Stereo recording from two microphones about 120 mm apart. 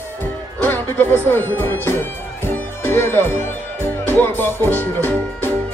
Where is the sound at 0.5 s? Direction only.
15° left (ahead or behind).